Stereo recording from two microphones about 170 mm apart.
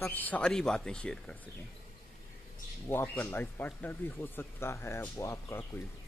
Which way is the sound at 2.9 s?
10° left (ahead or behind).